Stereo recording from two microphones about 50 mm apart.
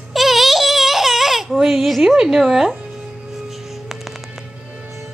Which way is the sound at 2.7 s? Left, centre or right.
Centre.